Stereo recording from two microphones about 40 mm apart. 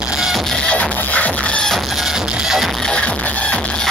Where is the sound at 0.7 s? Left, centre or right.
Left.